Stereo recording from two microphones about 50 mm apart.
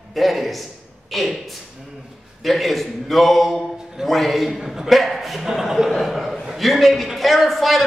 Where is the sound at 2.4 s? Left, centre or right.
Centre.